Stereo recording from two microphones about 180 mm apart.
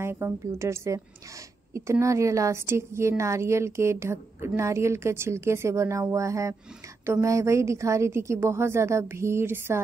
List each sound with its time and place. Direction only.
0.0 s a woman's voice: 15° right (ahead or behind)